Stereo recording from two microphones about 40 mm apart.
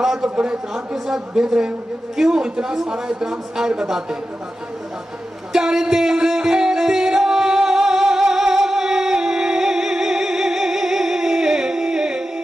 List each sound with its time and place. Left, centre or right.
0.0 s a sound: centre
0.4 s a man's voice: centre
0.9 s speech: centre
5.5 s music: centre